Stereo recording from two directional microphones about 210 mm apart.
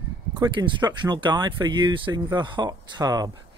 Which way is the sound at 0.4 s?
20° right (ahead or behind).